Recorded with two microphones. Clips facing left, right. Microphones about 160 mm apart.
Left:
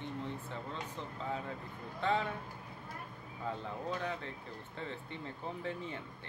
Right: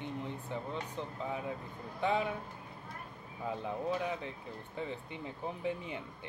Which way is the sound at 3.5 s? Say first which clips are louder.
Right 4 dB; 15° right (ahead or behind).